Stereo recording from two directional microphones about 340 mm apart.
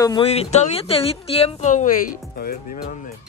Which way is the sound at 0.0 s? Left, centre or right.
Centre.